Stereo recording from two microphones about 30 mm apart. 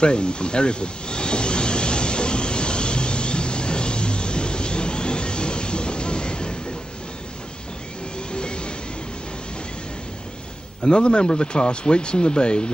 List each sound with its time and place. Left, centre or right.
0.0 s a sound: left
8.3 s train: left
10.8 s speech: left